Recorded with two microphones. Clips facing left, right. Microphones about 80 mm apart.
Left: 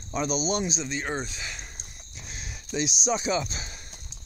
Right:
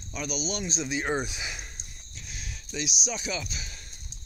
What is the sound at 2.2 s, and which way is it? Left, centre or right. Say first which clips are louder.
Speech: left 2 dB; left.